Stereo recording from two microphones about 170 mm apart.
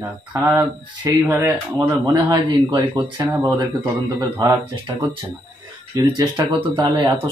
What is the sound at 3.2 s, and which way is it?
Speech, 10° right (ahead or behind).